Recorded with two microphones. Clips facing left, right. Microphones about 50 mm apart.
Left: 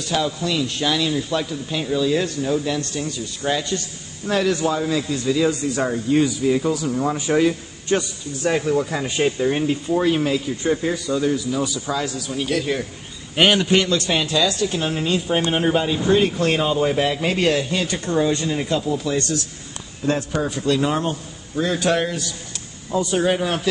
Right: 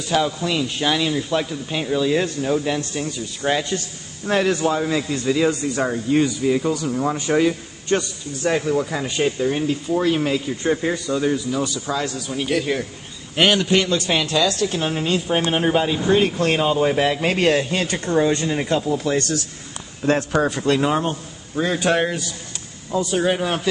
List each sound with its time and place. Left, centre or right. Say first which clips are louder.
0.1 s a man's voice: right 2 dB; centre
5.8 s a man's voice: left 1 dB; centre
10.2 s a man's voice: even; centre
11.3 s speech: even; centre
12.3 s a man's voice: right 1 dB; centre
13.4 s speech: left 1 dB; centre
13.8 s a man's voice: even; right
20.8 s a man's voice: right 1 dB; centre
23.1 s a man's voice: even; centre